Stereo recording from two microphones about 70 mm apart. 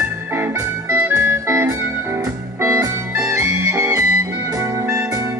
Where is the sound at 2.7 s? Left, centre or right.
Centre.